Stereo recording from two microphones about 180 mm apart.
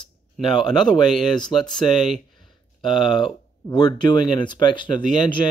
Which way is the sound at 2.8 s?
Centre (ahead or behind).